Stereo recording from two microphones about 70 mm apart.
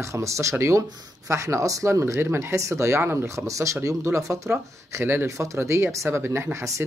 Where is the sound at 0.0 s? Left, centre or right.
Right.